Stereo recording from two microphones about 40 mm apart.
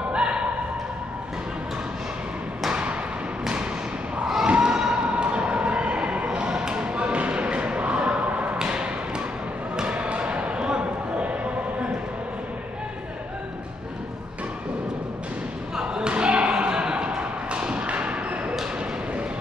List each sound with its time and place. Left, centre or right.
0.1 s a sound: right
2.7 s thump: right
4.5 s a sound: right
8.5 s thump: right
9.8 s basketball bounce: right
15.7 s thump: right